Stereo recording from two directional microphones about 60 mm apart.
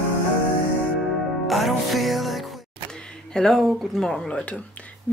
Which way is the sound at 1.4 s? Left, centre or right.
Centre.